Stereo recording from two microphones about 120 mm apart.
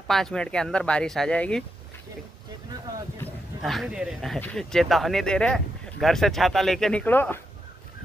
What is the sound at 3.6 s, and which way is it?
Speech, centre (ahead or behind).